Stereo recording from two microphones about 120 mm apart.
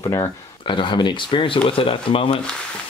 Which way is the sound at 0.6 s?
40° left (ahead or behind).